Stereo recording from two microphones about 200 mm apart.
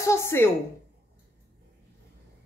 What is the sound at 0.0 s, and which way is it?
Speech, 15° left (ahead or behind).